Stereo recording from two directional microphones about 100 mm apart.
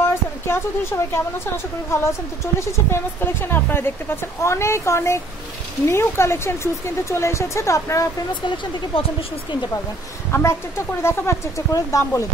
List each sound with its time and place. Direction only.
0.5 s a woman's voice: 25° left (ahead or behind)
8.3 s speech: 50° left (ahead or behind)
10.3 s a woman's voice: 25° left (ahead or behind)